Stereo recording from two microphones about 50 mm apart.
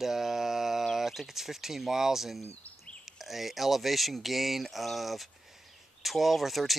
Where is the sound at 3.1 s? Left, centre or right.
Centre.